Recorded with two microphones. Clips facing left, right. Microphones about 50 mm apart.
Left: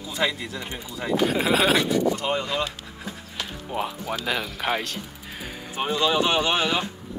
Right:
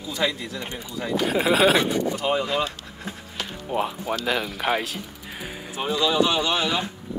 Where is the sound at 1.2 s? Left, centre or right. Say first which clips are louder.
Right 2 dB; centre.